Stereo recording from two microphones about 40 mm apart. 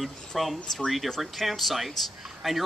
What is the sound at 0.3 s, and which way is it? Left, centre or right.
A man's voice, centre.